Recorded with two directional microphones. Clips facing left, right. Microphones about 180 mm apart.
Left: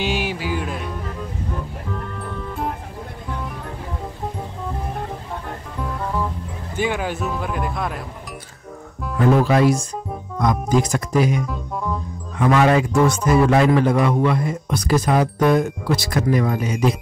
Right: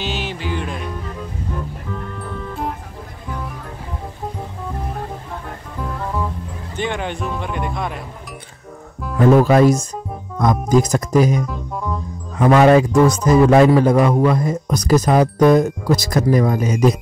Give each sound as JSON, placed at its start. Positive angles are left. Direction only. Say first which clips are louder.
{"t": 0.0, "sound": "music", "louder": "left 2 dB", "side_deg": 10}
{"t": 6.8, "sound": "speech", "louder": "left 1 dB", "side_deg": 5}
{"t": 9.4, "sound": "speech", "louder": "right 4 dB", "side_deg": -45}
{"t": 11.4, "sound": "music", "louder": "even", "side_deg": 0}
{"t": 12.4, "sound": "speech", "louder": "right 5 dB", "side_deg": -40}